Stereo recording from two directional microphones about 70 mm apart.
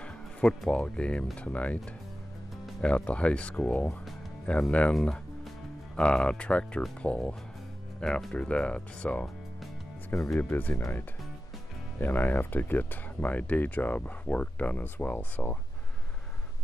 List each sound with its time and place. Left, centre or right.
0.0 s music: centre
0.7 s speech: centre
2.8 s speech: centre
5.9 s speech: centre
10.1 s speech: left
12.0 s speech: left